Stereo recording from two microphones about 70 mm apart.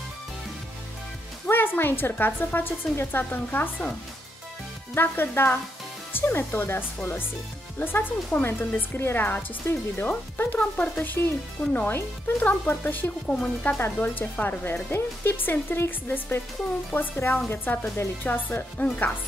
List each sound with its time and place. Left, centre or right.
1.5 s speech: left
4.9 s speech: left
8.4 s speech: left
11.1 s speech: left
11.8 s speech: left
13.3 s speech: centre
13.7 s speech: left